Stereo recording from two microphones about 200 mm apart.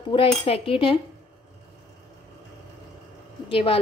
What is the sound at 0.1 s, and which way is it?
Speech, 30° left (ahead or behind).